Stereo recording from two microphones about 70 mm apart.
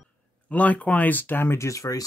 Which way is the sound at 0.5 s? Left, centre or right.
Left.